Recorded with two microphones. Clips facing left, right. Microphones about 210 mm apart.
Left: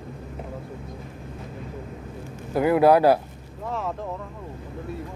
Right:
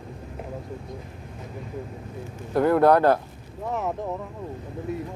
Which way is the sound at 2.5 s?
5° left (ahead or behind).